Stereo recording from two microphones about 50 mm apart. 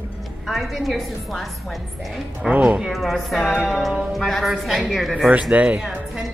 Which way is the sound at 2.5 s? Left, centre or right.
Right.